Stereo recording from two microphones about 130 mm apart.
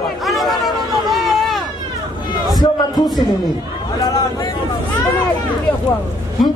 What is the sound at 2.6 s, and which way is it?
Speech, 30° left (ahead or behind).